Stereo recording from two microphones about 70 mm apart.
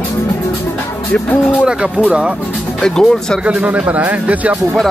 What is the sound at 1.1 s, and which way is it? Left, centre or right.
Speech, left.